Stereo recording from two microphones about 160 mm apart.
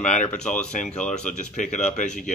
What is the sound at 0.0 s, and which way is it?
A man's voice, 50° left (ahead or behind).